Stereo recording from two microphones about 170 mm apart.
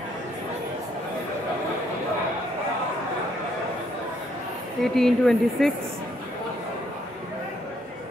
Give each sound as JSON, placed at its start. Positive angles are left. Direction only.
{"t": 4.8, "sound": "speech", "side_deg": 0}